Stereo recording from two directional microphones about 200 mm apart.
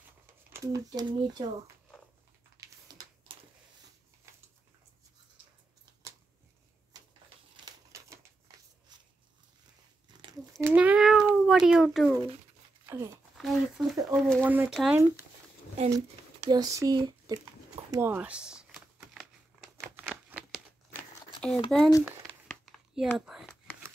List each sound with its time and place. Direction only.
0.5 s speech: 15° right (ahead or behind)
2.5 s a sound: 15° right (ahead or behind)
7.5 s typewriter: 20° right (ahead or behind)
10.6 s cat: 5° right (ahead or behind)
13.4 s speech: centre (ahead or behind)
16.4 s speech: 20° right (ahead or behind)
17.9 s typing: 10° right (ahead or behind)
20.0 s a sound: 10° right (ahead or behind)
20.9 s crumpling: 5° left (ahead or behind)
21.6 s speech: centre (ahead or behind)
22.9 s speech: 5° right (ahead or behind)